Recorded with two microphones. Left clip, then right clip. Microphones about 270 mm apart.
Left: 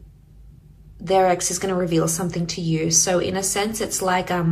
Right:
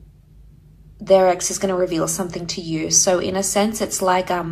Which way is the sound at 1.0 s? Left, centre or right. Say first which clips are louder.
Right 3 dB; centre.